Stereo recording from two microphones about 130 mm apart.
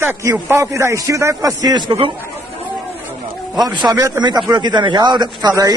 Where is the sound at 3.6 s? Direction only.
30° right (ahead or behind).